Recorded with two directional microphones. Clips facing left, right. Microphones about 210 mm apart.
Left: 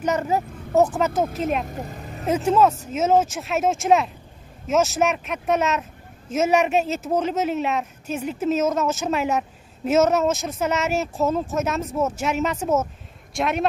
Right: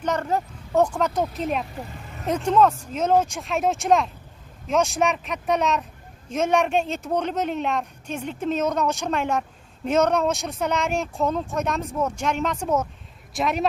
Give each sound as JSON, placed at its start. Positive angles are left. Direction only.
{"t": 0.0, "sound": "speech", "side_deg": 10}
{"t": 1.7, "sound": "vehicle", "side_deg": 45}
{"t": 2.2, "sound": "speech", "side_deg": 5}